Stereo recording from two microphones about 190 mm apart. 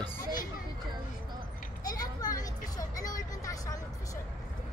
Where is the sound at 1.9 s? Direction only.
20° left (ahead or behind).